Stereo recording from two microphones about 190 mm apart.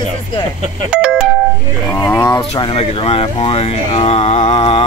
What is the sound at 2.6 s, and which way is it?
Speech, 30° left (ahead or behind).